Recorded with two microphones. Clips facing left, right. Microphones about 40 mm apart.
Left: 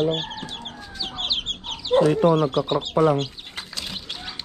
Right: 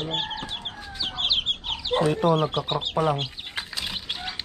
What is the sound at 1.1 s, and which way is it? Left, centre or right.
Chicken, centre.